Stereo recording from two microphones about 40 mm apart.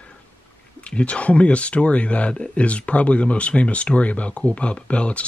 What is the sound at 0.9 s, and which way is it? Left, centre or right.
Speech, left.